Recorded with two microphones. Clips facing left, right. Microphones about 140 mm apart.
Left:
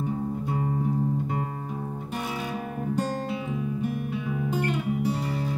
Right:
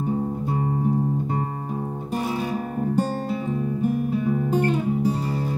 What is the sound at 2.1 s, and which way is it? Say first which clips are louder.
Music: right 7 dB; 40° right (ahead or behind).